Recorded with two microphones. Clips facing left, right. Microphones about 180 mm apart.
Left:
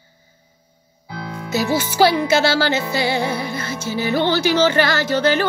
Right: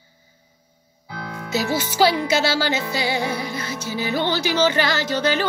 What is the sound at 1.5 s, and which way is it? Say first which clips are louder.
Music: left 3 dB; 50° left (ahead or behind).